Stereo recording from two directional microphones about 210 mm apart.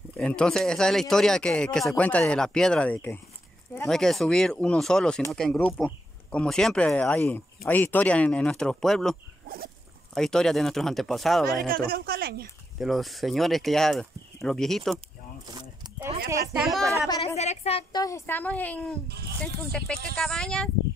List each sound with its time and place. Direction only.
0.2 s speech: 5° left (ahead or behind)
10.1 s speech: centre (ahead or behind)
11.7 s speech: 45° right (ahead or behind)
12.7 s speech: centre (ahead or behind)
15.5 s a sound: 20° right (ahead or behind)
16.3 s speech: centre (ahead or behind)
17.1 s a woman's voice: 20° left (ahead or behind)
17.4 s a woman's voice: 30° left (ahead or behind)
18.0 s a woman's voice: 10° left (ahead or behind)
20.2 s speech: centre (ahead or behind)